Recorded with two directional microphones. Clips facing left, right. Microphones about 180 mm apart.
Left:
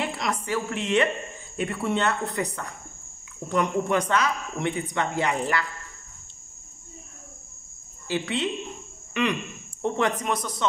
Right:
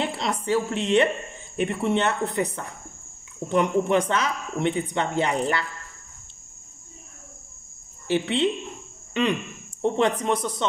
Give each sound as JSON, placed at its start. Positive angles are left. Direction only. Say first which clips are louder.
{"t": 0.0, "sound": "a woman's voice", "louder": "right 2 dB", "side_deg": -30}
{"t": 8.1, "sound": "speech", "louder": "right 4 dB", "side_deg": -25}